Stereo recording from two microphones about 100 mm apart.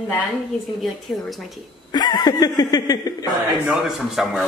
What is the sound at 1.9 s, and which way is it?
Speech, 45° left (ahead or behind).